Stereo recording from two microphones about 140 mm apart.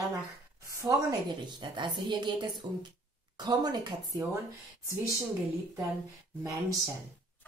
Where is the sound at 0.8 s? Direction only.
25° right (ahead or behind).